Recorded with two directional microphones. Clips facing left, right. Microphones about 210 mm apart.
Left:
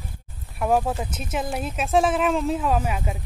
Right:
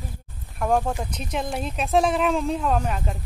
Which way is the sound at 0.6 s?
5° left (ahead or behind).